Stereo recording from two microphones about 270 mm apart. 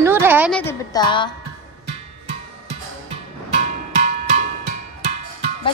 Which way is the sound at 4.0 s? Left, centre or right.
Right.